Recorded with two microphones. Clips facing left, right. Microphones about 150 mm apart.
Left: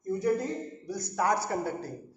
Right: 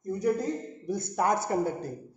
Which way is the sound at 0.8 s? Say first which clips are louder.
Right 2 dB; 20° right (ahead or behind).